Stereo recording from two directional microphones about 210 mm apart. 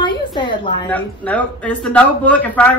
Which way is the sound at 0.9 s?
5° left (ahead or behind).